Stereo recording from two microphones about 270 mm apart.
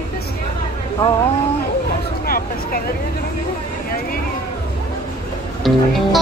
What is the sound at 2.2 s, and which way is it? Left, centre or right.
Speech, left.